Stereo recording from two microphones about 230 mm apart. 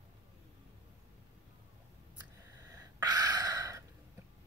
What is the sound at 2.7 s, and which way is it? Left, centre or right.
Gasp, centre.